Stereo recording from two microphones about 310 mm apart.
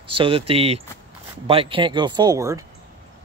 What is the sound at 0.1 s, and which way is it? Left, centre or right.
Speech, centre.